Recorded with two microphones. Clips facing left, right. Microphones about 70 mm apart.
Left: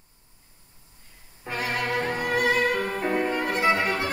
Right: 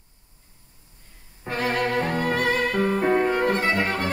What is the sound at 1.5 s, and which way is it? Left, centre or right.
Violin, right.